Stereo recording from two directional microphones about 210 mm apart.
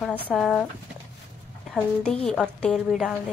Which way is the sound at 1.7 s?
5° left (ahead or behind).